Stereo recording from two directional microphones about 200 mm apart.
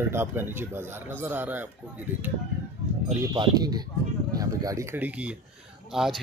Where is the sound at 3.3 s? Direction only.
20° right (ahead or behind); by 6.2 s centre (ahead or behind).